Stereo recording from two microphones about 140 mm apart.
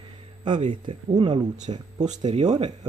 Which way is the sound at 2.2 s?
30° right (ahead or behind).